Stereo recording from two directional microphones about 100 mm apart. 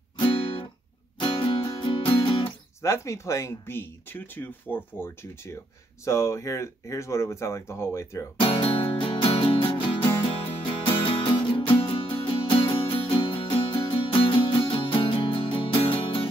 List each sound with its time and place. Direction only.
0.2 s music: 60° left (ahead or behind)
1.2 s music: 50° left (ahead or behind)
2.8 s speech: 30° left (ahead or behind)
8.4 s music: 65° left (ahead or behind)